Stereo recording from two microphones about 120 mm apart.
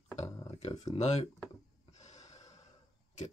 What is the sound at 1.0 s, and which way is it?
Speech, 65° left (ahead or behind).